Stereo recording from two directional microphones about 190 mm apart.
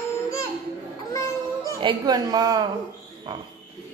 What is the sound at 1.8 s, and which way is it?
Speech, 25° right (ahead or behind).